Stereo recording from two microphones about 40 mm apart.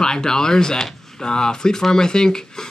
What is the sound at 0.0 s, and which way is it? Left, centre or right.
Speech, centre.